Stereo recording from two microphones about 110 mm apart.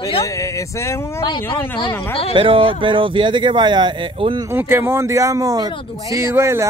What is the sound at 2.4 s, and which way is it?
Speech, 50° right (ahead or behind).